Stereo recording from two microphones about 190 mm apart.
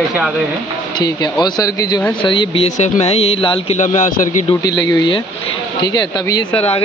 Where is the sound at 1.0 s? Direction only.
25° left (ahead or behind).